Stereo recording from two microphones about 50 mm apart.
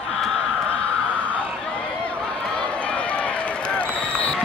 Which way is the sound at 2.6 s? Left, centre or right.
Left.